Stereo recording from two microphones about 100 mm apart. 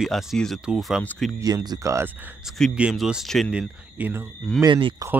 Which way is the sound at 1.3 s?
35° right (ahead or behind).